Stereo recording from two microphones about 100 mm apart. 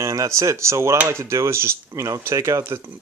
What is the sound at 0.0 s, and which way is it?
Speech, 30° right (ahead or behind).